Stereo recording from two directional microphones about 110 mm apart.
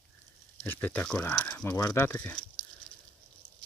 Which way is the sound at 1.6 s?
35° left (ahead or behind).